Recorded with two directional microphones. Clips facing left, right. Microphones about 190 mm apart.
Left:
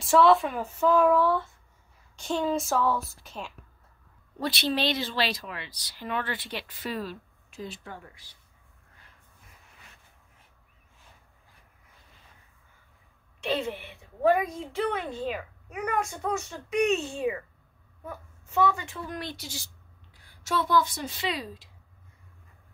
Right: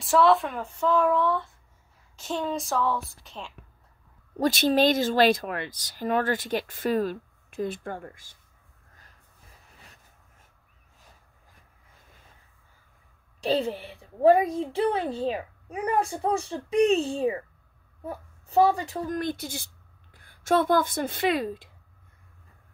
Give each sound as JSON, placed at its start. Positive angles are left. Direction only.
{"t": 0.0, "sound": "speech", "side_deg": 0}
{"t": 4.4, "sound": "speech", "side_deg": -45}
{"t": 8.9, "sound": "a sound", "side_deg": -40}
{"t": 13.4, "sound": "a woman's voice", "side_deg": -35}